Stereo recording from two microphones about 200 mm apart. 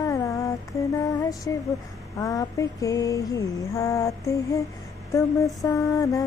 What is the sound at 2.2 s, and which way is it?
Mantra, 15° left (ahead or behind).